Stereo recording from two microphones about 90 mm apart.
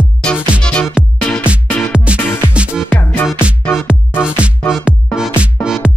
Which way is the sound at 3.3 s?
10° right (ahead or behind).